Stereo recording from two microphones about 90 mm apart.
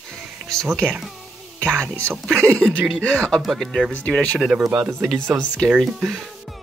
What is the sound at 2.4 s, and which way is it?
Speech, 15° left (ahead or behind).